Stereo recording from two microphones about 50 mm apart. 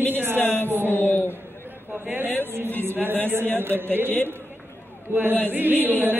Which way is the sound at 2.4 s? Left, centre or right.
Right.